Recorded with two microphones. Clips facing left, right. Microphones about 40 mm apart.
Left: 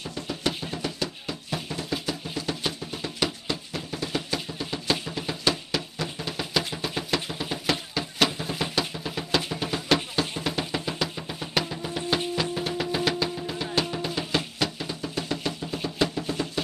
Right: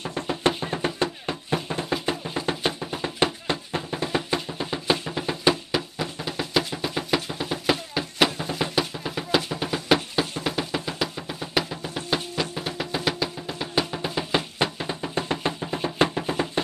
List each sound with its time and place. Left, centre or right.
0.0 s music: right; by 14.4 s centre
14.6 s music: right